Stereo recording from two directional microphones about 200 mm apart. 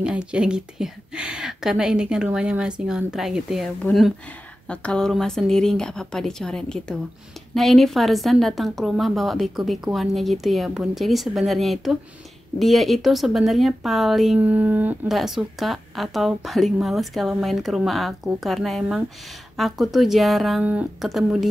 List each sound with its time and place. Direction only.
0.0 s speech: 5° right (ahead or behind)